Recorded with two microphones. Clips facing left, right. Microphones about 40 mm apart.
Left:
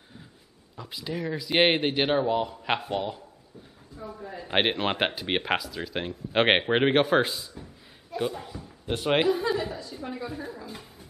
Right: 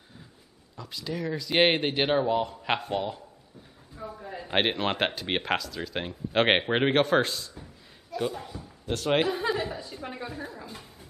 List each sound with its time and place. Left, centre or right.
0.7 s speech: centre
3.9 s a sound: centre
4.5 s speech: centre
8.8 s speech: centre
9.5 s chuckle: centre
10.0 s a woman's voice: centre
10.3 s speech: centre
10.7 s a sound: centre